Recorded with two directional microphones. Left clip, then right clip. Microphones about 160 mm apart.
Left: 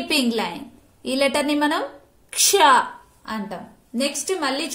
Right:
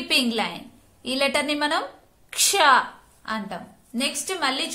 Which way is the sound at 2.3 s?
10° left (ahead or behind).